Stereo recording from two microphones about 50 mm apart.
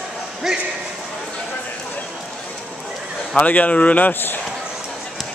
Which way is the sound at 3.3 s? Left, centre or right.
Left.